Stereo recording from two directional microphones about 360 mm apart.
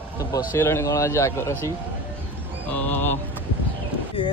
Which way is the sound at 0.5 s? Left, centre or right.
Centre.